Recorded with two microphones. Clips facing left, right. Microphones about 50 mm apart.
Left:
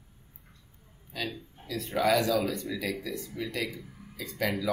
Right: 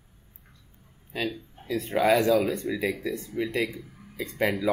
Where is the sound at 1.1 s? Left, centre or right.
Right.